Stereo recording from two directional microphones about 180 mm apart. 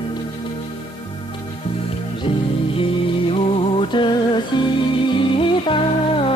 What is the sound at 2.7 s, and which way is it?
Music, 30° left (ahead or behind).